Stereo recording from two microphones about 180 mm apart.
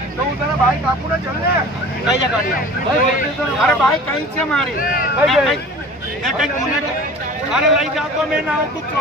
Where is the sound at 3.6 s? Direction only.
Centre (ahead or behind).